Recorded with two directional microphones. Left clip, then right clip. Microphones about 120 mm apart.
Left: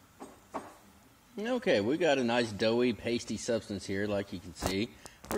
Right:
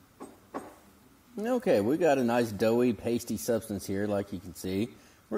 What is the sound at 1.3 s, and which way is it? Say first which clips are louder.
Speech: right 3 dB; 50° right (ahead or behind).